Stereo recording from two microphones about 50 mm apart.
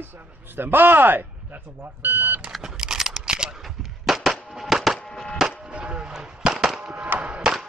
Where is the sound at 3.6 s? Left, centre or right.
Centre.